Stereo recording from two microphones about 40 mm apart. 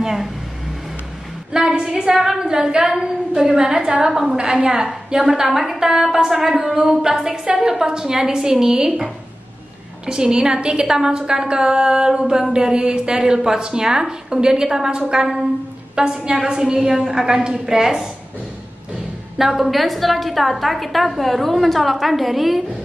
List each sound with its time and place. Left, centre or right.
0.0 s speech: centre
1.5 s a woman's voice: centre
19.3 s a woman's voice: centre